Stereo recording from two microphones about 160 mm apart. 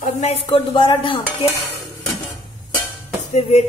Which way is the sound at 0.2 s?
40° left (ahead or behind).